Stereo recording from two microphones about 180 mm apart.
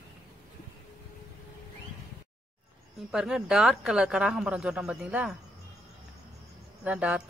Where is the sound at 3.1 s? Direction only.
Centre (ahead or behind).